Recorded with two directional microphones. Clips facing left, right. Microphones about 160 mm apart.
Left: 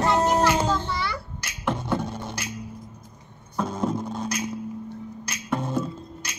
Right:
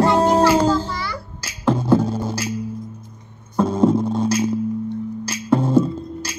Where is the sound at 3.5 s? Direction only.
30° right (ahead or behind).